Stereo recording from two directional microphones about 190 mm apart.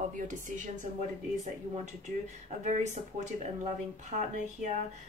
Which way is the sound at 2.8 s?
40° right (ahead or behind).